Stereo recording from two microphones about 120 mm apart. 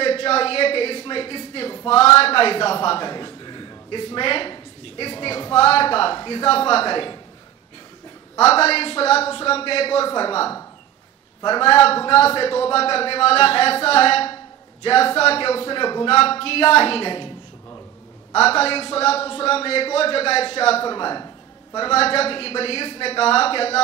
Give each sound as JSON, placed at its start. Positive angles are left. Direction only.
{"t": 0.0, "sound": "a sound", "side_deg": 55}
{"t": 1.9, "sound": "a man's voice", "side_deg": 55}
{"t": 8.4, "sound": "a man's voice", "side_deg": 60}
{"t": 11.6, "sound": "a man's voice", "side_deg": 50}
{"t": 16.2, "sound": "a man's voice", "side_deg": 55}
{"t": 18.3, "sound": "a man's voice", "side_deg": 55}
{"t": 20.9, "sound": "a man's voice", "side_deg": 40}
{"t": 21.7, "sound": "a man's voice", "side_deg": 50}